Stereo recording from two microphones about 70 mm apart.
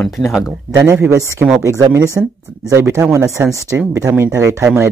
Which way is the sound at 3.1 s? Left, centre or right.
Right.